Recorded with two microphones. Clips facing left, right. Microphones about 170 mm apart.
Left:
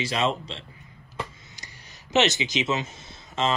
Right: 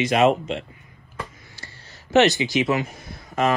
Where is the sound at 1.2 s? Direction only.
20° left (ahead or behind).